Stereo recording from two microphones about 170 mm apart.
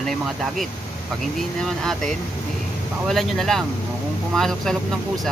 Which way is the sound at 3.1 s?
Centre (ahead or behind).